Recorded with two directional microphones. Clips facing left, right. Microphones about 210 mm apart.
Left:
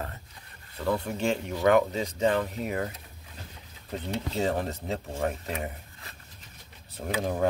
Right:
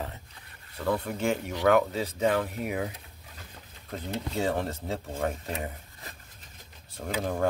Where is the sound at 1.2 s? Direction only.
10° right (ahead or behind).